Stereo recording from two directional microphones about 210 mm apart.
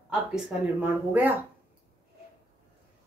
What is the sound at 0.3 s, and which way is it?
A woman's voice, 5° right (ahead or behind).